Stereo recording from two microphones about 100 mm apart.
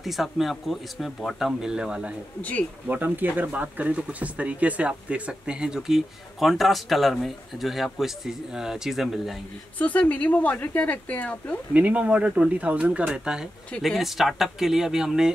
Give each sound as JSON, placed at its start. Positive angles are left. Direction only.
{"t": 0.0, "sound": "speech", "side_deg": 0}
{"t": 9.8, "sound": "speech", "side_deg": 15}
{"t": 11.7, "sound": "speech", "side_deg": -15}
{"t": 13.7, "sound": "speech", "side_deg": 5}